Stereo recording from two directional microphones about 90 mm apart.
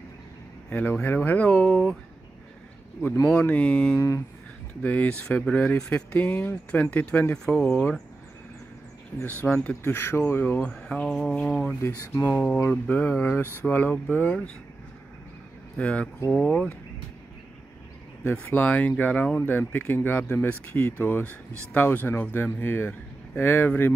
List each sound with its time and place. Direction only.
0.7 s speech: 15° left (ahead or behind)
3.3 s speech: 15° left (ahead or behind)
3.9 s speech: 35° left (ahead or behind)
4.8 s speech: 15° left (ahead or behind)
7.4 s speech: 5° left (ahead or behind)
9.2 s speech: 20° left (ahead or behind)
10.6 s speech: 10° left (ahead or behind)
11.8 s speech: 25° left (ahead or behind)
15.8 s speech: 15° left (ahead or behind)
18.2 s speech: 20° left (ahead or behind)